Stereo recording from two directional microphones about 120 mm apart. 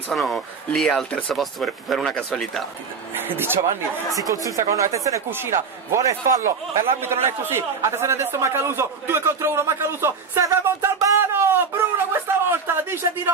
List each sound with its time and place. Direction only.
0.1 s speech: centre (ahead or behind)
3.2 s speech: 20° right (ahead or behind)
4.1 s a man's voice: 30° right (ahead or behind)